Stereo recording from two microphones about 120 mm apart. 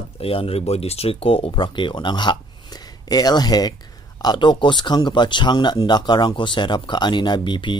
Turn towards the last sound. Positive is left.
turn(degrees=40)  # may be behind; listen again after turning